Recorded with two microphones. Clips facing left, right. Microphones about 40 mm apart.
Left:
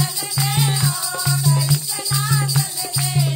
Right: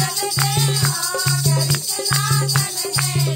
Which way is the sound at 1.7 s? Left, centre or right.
Right.